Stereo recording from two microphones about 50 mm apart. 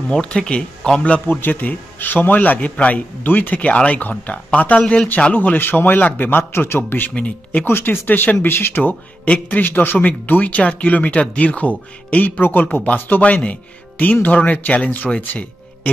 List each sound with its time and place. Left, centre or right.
0.1 s speech: centre
1.2 s a man's voice: left
4.7 s speech: centre
5.3 s a man's voice: left
9.2 s a man's voice: left
9.7 s speech: left
9.9 s a man's voice: left